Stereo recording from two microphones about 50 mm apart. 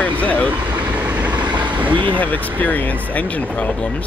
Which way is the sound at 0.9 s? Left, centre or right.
Right.